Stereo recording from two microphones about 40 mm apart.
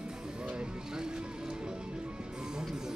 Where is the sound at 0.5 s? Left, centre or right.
Right.